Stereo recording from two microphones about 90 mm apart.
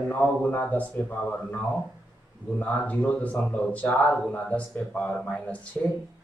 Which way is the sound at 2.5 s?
15° left (ahead or behind).